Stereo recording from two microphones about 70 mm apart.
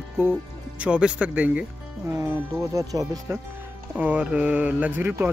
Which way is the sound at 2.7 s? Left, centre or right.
Right.